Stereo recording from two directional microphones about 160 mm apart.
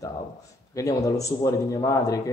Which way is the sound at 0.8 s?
20° left (ahead or behind).